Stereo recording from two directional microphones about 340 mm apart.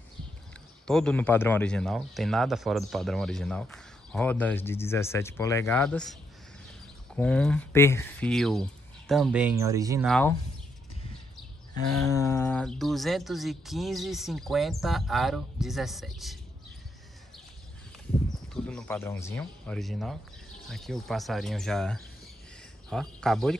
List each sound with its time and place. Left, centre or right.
0.8 s speech: centre
7.2 s speech: centre
12.1 s speech: centre
18.5 s speech: centre